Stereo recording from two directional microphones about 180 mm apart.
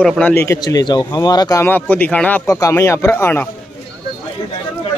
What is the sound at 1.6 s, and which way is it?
Speech, 10° left (ahead or behind).